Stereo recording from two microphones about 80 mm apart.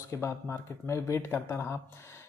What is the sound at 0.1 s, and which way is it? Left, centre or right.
Speech, left.